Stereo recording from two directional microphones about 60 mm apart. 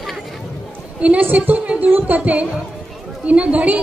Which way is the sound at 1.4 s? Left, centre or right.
Right.